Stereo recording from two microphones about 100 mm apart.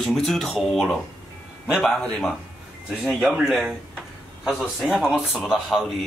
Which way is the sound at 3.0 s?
5° right (ahead or behind).